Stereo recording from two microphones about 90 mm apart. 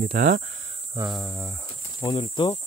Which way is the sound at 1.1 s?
Centre (ahead or behind).